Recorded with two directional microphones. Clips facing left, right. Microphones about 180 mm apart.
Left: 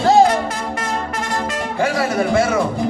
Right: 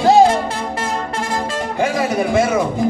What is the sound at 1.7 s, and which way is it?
Music, 15° right (ahead or behind).